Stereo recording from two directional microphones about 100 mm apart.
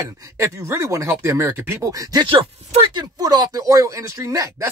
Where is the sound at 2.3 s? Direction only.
70° right (ahead or behind).